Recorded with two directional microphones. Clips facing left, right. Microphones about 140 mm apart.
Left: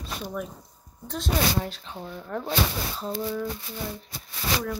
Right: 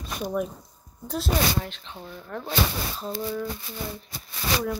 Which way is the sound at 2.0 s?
5° left (ahead or behind).